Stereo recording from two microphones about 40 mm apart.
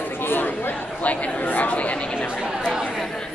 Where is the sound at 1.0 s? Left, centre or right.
Left.